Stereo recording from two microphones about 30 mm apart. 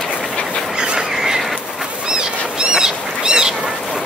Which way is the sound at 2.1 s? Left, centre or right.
Right.